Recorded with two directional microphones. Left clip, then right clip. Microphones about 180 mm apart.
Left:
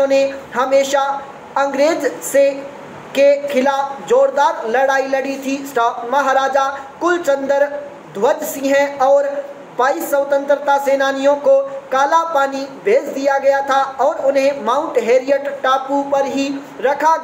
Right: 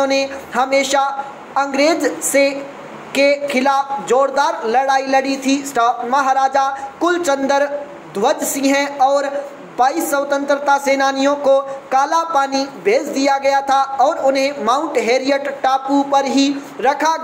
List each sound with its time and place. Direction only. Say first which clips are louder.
0.0 s a woman's voice: left 3 dB; 35° right (ahead or behind)